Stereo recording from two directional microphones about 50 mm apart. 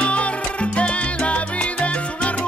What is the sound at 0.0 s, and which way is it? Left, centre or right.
Salsa music, left.